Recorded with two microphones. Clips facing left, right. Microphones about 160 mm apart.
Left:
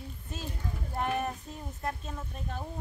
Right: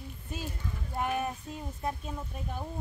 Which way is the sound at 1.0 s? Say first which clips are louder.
Even; 5° right (ahead or behind).